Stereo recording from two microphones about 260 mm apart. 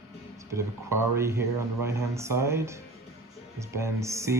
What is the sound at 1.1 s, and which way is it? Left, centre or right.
Speech, centre.